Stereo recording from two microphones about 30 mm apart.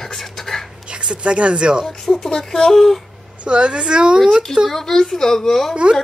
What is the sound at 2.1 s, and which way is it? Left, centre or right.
Speech, centre.